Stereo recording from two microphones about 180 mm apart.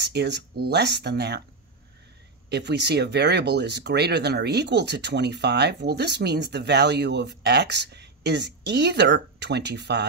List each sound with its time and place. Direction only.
0.0 s speech: 65° right (ahead or behind)
2.5 s speech: 70° right (ahead or behind)